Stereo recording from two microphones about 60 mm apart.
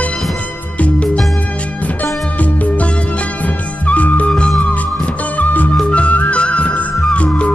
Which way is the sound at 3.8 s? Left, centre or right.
Left.